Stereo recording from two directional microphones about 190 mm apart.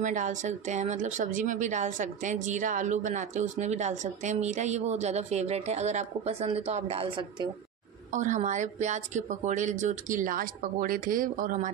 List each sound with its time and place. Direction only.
0.0 s a woman's voice: 40° right (ahead or behind); by 7.4 s 25° right (ahead or behind)
8.1 s a woman's voice: 40° right (ahead or behind)